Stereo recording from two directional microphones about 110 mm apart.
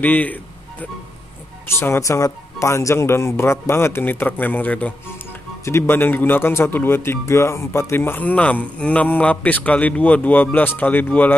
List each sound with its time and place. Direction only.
0.0 s a man's voice: 15° left (ahead or behind)